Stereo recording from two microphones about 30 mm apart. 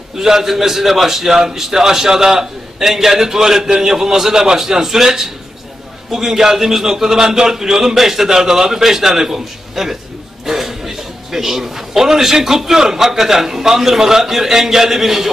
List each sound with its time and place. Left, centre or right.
0.2 s a man's voice: centre